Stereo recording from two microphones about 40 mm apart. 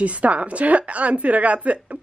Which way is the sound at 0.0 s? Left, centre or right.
Right.